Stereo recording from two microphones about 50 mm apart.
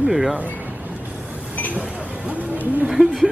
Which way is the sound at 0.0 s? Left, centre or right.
Centre.